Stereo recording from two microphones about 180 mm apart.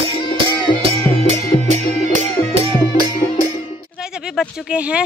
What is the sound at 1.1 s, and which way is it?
Music, 35° right (ahead or behind).